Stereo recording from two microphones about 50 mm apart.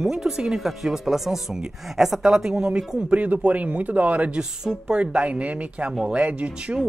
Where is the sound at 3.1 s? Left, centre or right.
Right.